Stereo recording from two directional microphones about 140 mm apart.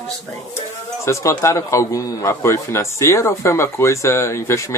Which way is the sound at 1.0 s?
20° left (ahead or behind).